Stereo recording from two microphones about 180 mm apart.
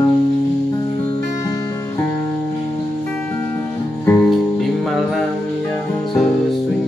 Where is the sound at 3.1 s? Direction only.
10° left (ahead or behind).